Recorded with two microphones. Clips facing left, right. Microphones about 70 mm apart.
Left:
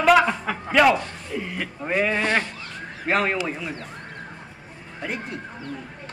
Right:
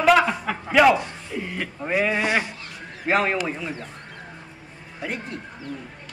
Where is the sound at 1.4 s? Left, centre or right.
Centre.